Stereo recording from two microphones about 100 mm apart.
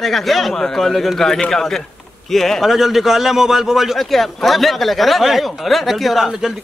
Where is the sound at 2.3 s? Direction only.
5° left (ahead or behind).